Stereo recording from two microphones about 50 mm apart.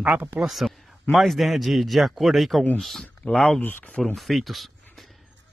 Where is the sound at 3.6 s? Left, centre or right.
Left.